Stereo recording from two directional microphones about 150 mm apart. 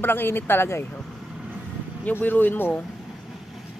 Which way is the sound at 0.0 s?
15° left (ahead or behind).